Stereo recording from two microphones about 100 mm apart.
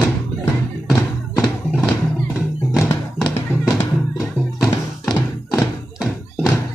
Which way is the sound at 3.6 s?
5° right (ahead or behind).